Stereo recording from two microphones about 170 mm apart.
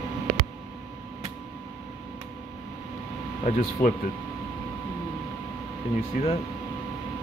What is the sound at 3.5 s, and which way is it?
Speech, 50° left (ahead or behind).